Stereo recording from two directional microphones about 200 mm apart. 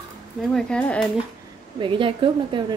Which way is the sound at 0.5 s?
5° left (ahead or behind).